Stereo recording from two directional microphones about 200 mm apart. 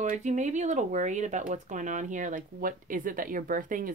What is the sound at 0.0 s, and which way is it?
Speech, 40° right (ahead or behind).